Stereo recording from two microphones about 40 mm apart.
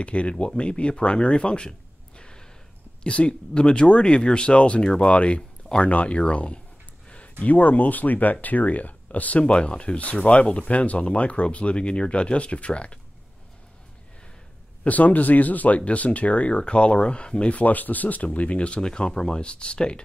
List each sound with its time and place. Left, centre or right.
0.0 s speech: left
5.7 s speech: centre
6.0 s speech: left
9.4 s speech: left
14.9 s speech: left
17.6 s speech: left